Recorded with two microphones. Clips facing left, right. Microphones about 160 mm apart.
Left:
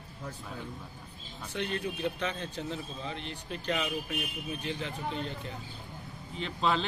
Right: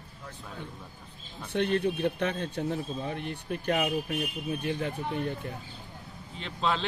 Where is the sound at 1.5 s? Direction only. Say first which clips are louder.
Right 7 dB; 60° right (ahead or behind).